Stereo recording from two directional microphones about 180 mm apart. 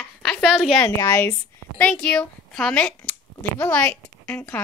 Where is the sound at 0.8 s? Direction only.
15° left (ahead or behind).